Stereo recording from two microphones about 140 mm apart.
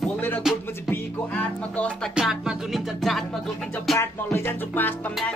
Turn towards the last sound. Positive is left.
turn(degrees=15)  # may be behind; listen again after turning